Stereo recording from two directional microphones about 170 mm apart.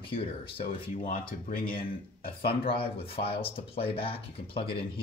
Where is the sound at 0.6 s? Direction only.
50° left (ahead or behind).